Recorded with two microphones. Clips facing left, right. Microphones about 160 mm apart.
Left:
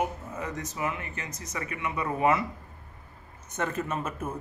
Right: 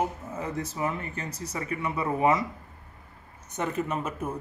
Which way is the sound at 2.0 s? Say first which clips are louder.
Right 1 dB; 20° right (ahead or behind).